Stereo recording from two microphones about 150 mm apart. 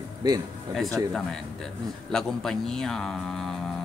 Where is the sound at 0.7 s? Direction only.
Centre (ahead or behind).